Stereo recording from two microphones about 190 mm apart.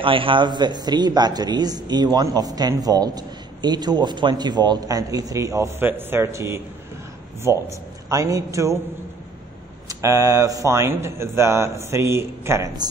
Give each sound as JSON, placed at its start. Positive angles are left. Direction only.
{"t": 0.0, "sound": "speech", "side_deg": -25}
{"t": 8.1, "sound": "a man's voice", "side_deg": -15}
{"t": 9.8, "sound": "a man's voice", "side_deg": -15}